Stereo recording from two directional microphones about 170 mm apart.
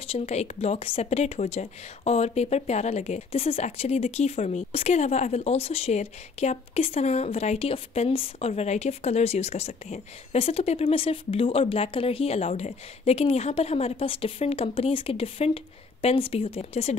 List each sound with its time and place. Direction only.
0.1 s speech: 40° left (ahead or behind)